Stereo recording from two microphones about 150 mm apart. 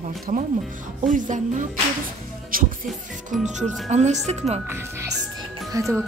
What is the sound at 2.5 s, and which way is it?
Music, 70° right (ahead or behind).